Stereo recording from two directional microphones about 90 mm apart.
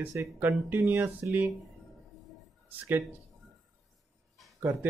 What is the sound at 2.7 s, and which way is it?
Speech, 20° right (ahead or behind).